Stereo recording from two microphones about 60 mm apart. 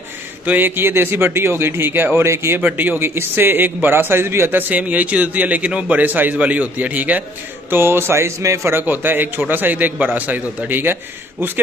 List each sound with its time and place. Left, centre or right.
0.5 s a man's voice: right
2.6 s a man's voice: right
7.7 s speech: right
8.7 s a man's voice: right